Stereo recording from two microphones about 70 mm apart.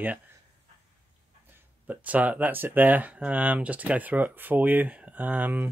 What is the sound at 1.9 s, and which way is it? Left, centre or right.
Speech, right.